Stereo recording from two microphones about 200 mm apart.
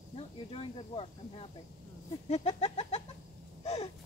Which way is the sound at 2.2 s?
30° left (ahead or behind).